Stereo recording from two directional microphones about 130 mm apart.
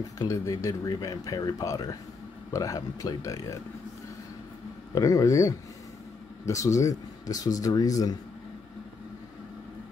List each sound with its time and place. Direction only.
0.2 s speech: 25° left (ahead or behind)
4.9 s speech: 25° left (ahead or behind)